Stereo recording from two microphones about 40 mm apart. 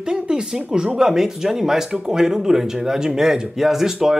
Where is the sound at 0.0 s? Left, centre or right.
Centre.